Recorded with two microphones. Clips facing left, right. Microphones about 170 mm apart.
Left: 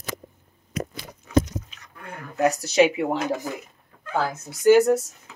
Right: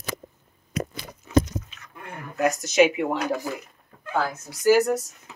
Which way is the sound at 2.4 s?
35° left (ahead or behind).